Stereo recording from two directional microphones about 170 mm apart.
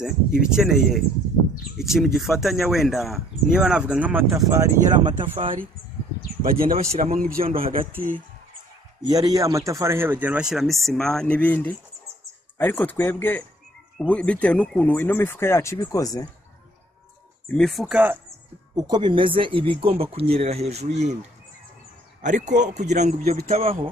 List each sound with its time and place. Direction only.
0.0 s speech: 5° right (ahead or behind); by 5.1 s 20° right (ahead or behind)
6.4 s a man's voice: 55° right (ahead or behind)
9.0 s speech: 20° right (ahead or behind); by 16.3 s 20° left (ahead or behind)
17.5 s speech: 5° left (ahead or behind)
18.8 s speech: 25° right (ahead or behind); by 21.2 s 40° right (ahead or behind)
22.2 s a man's voice: 45° right (ahead or behind)